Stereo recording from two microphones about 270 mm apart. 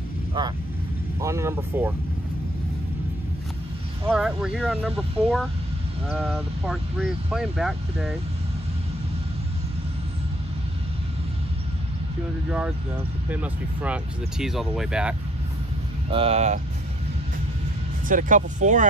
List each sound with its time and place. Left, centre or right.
0.4 s speech: centre
4.1 s speech: centre
12.4 s speech: centre
16.1 s speech: right
18.0 s speech: right